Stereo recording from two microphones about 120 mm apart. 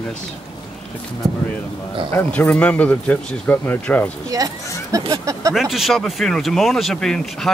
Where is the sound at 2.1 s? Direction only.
15° left (ahead or behind).